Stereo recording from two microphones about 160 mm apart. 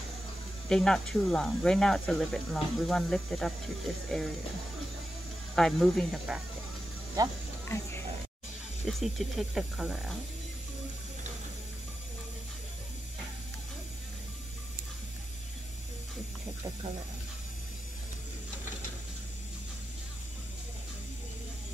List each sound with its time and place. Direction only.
0.7 s speech: 5° left (ahead or behind)
5.6 s speech: centre (ahead or behind)
7.2 s speech: 20° right (ahead or behind)
7.6 s a sound: 15° left (ahead or behind)
8.8 s speech: centre (ahead or behind)